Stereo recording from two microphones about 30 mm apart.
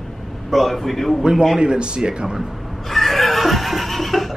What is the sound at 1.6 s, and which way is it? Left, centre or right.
Speech, right.